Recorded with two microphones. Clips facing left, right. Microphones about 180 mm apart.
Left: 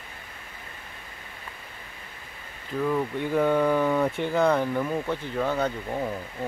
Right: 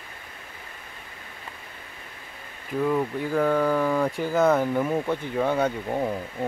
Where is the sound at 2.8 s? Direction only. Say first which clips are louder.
Right 1 dB; 5° right (ahead or behind).